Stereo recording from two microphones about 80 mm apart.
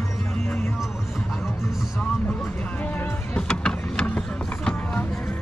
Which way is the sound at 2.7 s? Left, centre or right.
Left.